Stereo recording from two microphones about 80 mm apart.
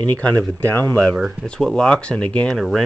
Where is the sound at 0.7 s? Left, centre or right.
Left.